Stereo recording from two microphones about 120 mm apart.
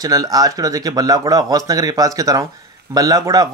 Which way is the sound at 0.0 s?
30° right (ahead or behind).